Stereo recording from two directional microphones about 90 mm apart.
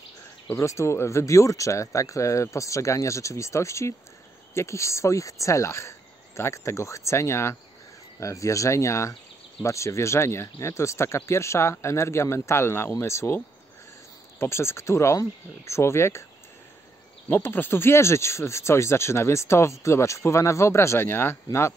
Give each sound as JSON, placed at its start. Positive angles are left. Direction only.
{"t": 0.6, "sound": "speech", "side_deg": 30}
{"t": 14.4, "sound": "speech", "side_deg": 30}
{"t": 17.3, "sound": "speech", "side_deg": 25}